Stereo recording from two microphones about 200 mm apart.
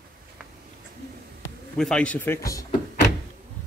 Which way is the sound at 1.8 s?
5° left (ahead or behind).